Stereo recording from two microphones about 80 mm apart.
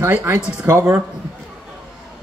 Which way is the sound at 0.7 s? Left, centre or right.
Right.